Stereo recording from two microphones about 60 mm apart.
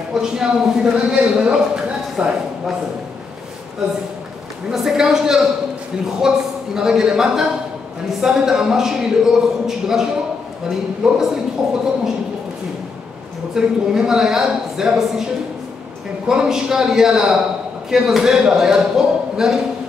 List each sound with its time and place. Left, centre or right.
0.1 s a man's voice: centre
4.6 s speech: centre
13.6 s speech: centre
16.3 s speech: centre